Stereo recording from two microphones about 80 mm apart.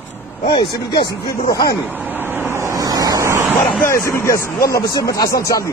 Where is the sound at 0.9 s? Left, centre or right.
Left.